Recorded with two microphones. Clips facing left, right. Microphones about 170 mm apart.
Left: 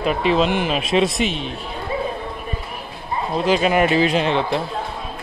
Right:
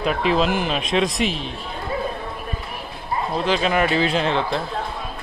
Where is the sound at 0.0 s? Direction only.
Centre (ahead or behind).